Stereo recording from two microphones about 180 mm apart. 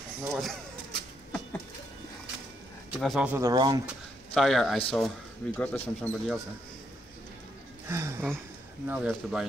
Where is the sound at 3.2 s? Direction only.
15° right (ahead or behind).